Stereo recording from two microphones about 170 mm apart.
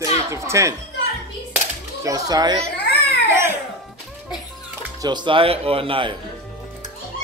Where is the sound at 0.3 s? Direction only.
15° right (ahead or behind).